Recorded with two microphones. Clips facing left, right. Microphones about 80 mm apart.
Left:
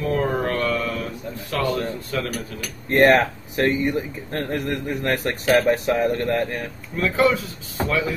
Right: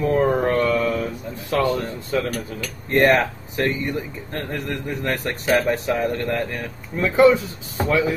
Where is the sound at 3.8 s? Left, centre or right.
Centre.